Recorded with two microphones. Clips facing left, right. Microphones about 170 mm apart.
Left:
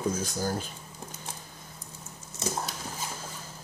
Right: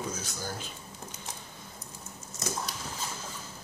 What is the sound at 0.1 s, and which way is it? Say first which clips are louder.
Speech: left 7 dB; 45° left (ahead or behind).